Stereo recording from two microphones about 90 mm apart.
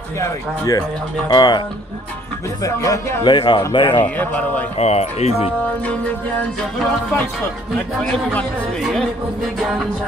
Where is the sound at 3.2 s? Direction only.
60° left (ahead or behind).